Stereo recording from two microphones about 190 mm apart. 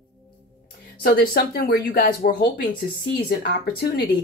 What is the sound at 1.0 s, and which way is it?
Speech, 55° left (ahead or behind).